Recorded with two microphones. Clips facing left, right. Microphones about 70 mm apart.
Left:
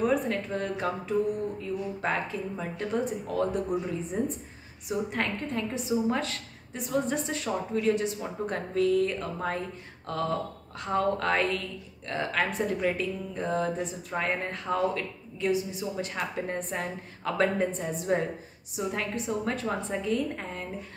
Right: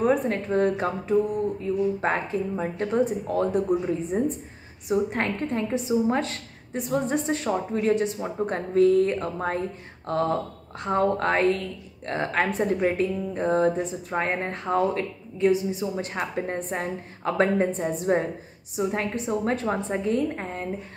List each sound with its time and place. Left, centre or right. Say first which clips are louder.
0.0 s a woman's voice: right 4 dB; right